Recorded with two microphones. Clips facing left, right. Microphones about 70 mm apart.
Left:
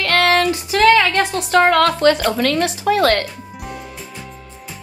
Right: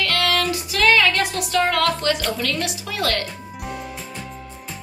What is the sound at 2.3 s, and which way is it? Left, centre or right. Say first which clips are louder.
Speech: left 7 dB; left.